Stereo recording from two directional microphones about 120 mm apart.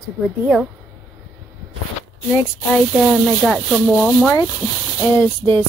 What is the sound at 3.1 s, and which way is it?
A woman's voice, centre (ahead or behind).